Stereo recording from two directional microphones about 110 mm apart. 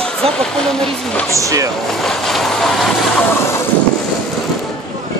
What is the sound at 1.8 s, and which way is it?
Vehicle, 5° left (ahead or behind).